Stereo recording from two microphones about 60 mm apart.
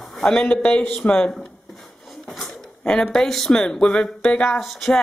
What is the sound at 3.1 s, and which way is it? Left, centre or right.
Speech, centre.